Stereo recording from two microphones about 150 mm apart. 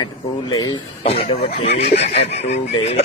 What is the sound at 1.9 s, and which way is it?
Speech, 45° left (ahead or behind).